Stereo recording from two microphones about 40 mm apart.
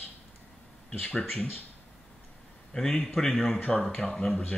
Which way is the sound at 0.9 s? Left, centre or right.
Left.